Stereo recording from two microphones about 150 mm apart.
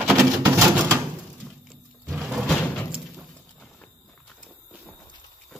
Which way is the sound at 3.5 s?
10° left (ahead or behind).